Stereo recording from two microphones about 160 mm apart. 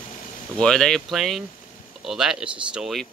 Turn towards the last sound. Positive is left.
turn(degrees=0)  # may be behind; listen again after turning